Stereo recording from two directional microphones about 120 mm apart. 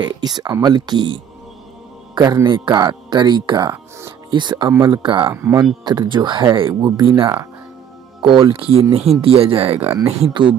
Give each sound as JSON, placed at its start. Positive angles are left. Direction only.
{"t": 0.0, "sound": "speech", "side_deg": -35}
{"t": 2.4, "sound": "speech", "side_deg": -40}
{"t": 5.2, "sound": "speech", "side_deg": -20}
{"t": 5.9, "sound": "speech", "side_deg": -40}